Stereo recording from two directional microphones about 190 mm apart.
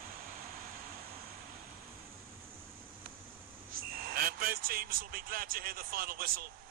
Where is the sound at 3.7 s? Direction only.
50° right (ahead or behind).